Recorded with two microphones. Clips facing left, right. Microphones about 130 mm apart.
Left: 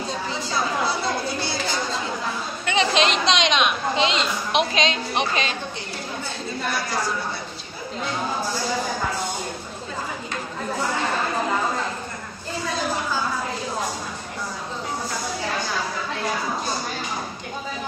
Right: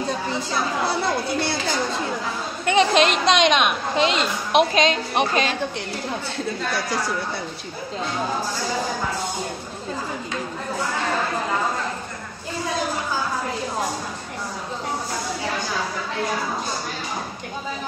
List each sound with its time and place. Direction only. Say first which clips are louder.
2.6 s a woman's voice: right 4 dB; 50° right (ahead or behind)